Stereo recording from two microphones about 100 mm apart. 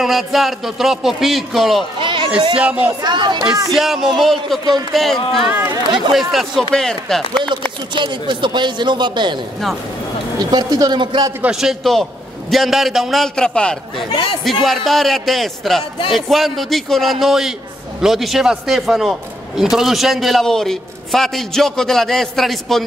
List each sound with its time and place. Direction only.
0.0 s a man's voice: centre (ahead or behind)
2.0 s chatter: 55° right (ahead or behind)
2.5 s speech: 15° right (ahead or behind)
3.0 s speech: 45° right (ahead or behind)
3.7 s a man's voice: 5° right (ahead or behind)
7.9 s speech: 55° right (ahead or behind)
10.4 s speech: 40° right (ahead or behind)
11.8 s a man's voice: centre (ahead or behind)
14.1 s speech: 65° left (ahead or behind)
14.4 s a man's voice: centre (ahead or behind)